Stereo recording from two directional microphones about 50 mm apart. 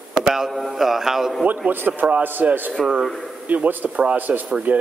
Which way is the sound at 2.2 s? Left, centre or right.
Right.